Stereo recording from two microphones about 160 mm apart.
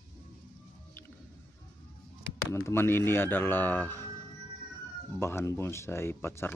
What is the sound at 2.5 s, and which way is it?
Speech, 15° left (ahead or behind).